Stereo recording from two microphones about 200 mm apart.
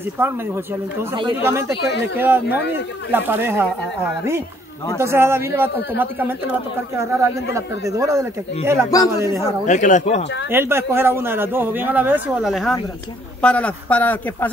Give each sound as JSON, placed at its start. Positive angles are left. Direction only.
{"t": 0.2, "sound": "speech", "side_deg": -10}
{"t": 1.4, "sound": "speech", "side_deg": -15}
{"t": 9.7, "sound": "speech", "side_deg": 40}
{"t": 10.5, "sound": "a man's voice", "side_deg": -10}